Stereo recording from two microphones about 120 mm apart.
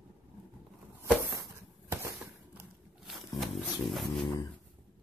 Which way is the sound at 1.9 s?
25° right (ahead or behind).